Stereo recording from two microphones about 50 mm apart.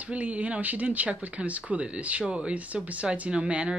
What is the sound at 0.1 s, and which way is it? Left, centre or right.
Speech, right.